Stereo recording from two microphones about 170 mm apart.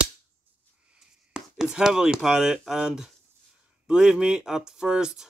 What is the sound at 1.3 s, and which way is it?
Speech, 5° right (ahead or behind).